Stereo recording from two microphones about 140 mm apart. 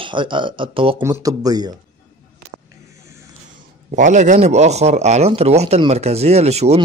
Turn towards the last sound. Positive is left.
turn(degrees=-50)  # may be behind; listen again after turning